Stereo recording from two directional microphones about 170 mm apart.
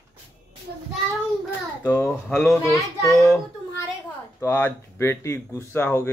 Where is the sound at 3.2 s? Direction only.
15° left (ahead or behind).